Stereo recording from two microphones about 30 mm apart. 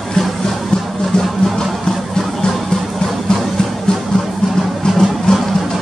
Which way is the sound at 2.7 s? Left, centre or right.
Left.